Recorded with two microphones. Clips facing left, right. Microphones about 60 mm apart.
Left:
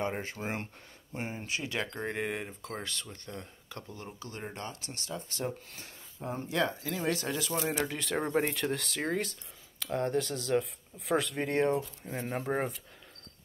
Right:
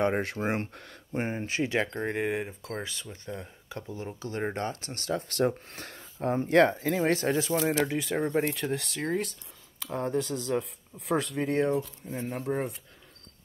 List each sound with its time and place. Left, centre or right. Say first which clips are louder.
0.0 s speech: right 7 dB; right
1.1 s speech: right 6 dB; right
2.0 s speech: right 5 dB; centre
4.4 s speech: right 10 dB; right
7.0 s speech: right 6 dB; right
7.8 s speech: right 4 dB; centre
12.1 s speech: even; left